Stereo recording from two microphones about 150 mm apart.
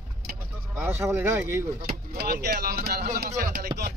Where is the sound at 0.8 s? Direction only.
15° right (ahead or behind).